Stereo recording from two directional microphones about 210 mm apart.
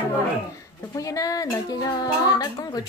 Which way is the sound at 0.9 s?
15° left (ahead or behind).